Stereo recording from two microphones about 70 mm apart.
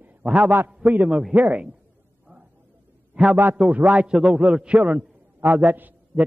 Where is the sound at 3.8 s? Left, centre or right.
Centre.